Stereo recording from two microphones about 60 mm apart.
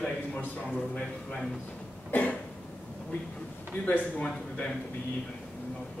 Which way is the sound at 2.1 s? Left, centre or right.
Left.